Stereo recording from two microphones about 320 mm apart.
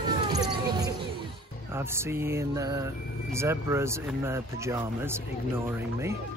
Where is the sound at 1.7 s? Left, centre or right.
Centre.